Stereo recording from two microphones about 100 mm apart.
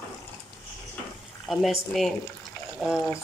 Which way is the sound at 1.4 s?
Centre (ahead or behind).